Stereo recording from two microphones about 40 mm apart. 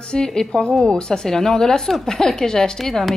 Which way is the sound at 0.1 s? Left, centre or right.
Centre.